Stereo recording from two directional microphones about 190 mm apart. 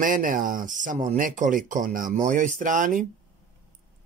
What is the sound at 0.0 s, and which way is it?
Speech, 45° right (ahead or behind).